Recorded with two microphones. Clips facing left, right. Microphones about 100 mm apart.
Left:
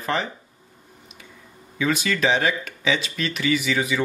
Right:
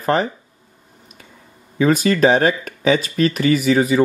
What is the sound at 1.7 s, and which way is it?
Speech, 40° right (ahead or behind).